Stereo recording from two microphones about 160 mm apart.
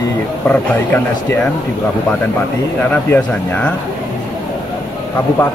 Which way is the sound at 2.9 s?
10° left (ahead or behind).